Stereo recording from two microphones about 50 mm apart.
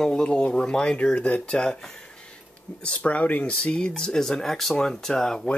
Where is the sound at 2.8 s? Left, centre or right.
Left.